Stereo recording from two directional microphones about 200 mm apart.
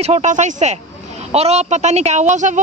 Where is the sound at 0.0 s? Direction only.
35° right (ahead or behind).